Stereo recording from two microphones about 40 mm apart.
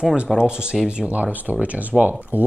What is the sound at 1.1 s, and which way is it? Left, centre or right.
Speech, right.